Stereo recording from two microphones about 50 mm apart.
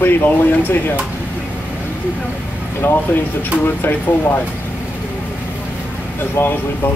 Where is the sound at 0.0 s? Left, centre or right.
Left.